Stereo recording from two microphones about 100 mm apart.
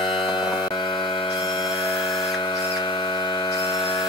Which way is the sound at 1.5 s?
60° left (ahead or behind).